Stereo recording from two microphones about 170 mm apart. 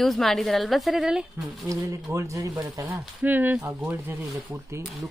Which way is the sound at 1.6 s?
20° right (ahead or behind).